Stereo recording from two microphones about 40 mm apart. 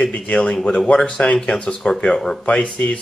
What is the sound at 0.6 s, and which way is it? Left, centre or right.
Speech, left.